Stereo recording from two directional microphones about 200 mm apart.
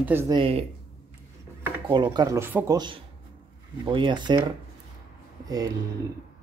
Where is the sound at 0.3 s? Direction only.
25° right (ahead or behind).